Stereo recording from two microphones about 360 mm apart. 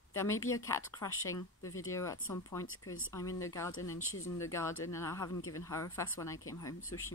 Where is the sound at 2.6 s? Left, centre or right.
Left.